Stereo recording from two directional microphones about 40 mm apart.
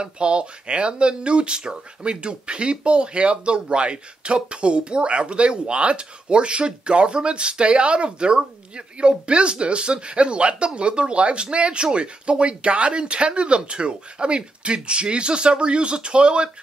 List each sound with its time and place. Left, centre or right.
0.0 s speech: right